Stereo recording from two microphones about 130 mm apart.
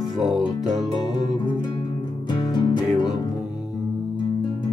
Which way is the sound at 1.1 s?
35° left (ahead or behind).